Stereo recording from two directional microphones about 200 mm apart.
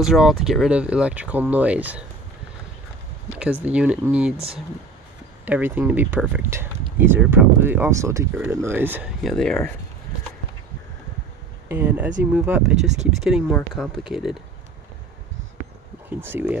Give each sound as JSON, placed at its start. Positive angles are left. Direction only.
{"t": 0.0, "sound": "speech", "side_deg": 0}
{"t": 3.6, "sound": "speech", "side_deg": -5}
{"t": 5.4, "sound": "speech", "side_deg": -10}
{"t": 11.7, "sound": "speech", "side_deg": -10}
{"t": 12.8, "sound": "speech", "side_deg": -35}
{"t": 13.2, "sound": "speech", "side_deg": 0}
{"t": 16.2, "sound": "speech", "side_deg": -10}